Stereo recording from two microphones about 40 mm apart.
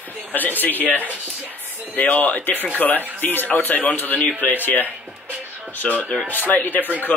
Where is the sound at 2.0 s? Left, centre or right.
Left.